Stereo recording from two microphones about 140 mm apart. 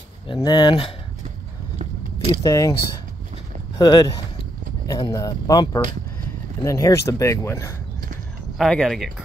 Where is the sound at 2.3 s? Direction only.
25° left (ahead or behind).